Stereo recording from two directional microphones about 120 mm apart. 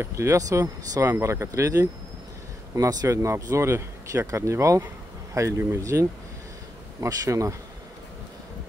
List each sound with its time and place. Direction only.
0.0 s speech: 25° right (ahead or behind)